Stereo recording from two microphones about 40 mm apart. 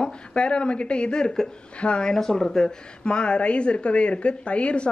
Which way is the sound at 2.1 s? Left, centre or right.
Centre.